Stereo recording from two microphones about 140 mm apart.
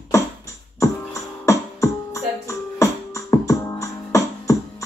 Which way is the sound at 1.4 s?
20° left (ahead or behind).